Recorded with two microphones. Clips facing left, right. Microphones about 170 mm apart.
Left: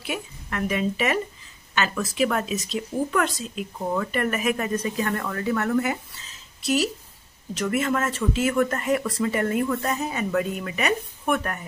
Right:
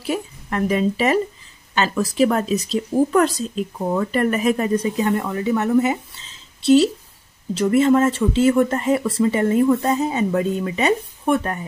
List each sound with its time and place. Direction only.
0.0 s speech: 35° right (ahead or behind)